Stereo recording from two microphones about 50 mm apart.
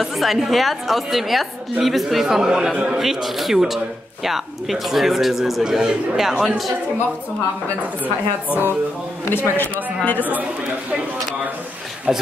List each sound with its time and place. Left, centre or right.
0.0 s a man's voice: centre
8.0 s a woman's voice: right
9.3 s a man's voice: left
12.1 s speech: centre